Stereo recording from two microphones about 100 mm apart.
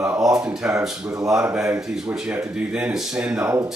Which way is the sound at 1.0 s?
35° right (ahead or behind).